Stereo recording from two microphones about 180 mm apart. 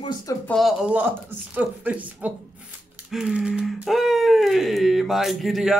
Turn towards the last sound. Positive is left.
turn(degrees=0)  # may be behind; listen again after turning